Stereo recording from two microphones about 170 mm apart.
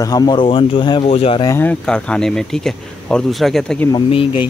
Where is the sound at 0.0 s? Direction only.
25° left (ahead or behind).